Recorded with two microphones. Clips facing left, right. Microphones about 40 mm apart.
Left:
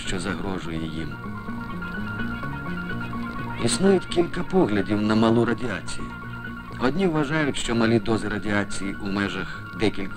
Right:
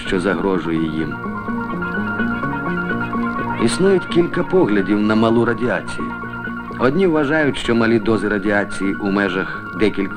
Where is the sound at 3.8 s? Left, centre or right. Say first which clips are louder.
Right 4 dB; right.